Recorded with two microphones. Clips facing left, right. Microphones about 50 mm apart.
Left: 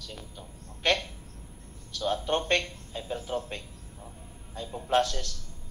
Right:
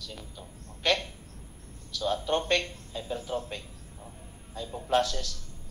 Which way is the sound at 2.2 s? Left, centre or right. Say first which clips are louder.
Even; centre.